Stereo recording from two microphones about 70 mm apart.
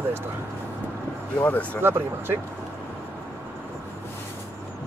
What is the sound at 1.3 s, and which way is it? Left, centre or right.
Speech, left.